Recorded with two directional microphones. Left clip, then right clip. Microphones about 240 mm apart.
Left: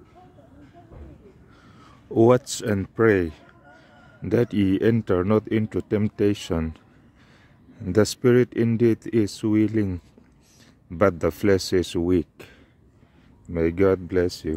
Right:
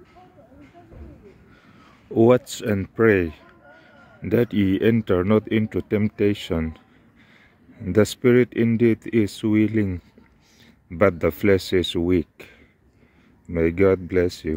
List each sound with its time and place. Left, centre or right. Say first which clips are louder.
1.8 s speech: right 1 dB; centre
7.8 s speech: right 1 dB; centre